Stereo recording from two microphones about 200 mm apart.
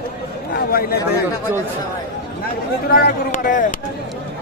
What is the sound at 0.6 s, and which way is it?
Speech, 50° left (ahead or behind).